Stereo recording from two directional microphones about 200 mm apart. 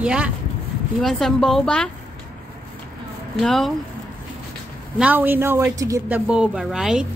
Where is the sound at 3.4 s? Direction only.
Centre (ahead or behind).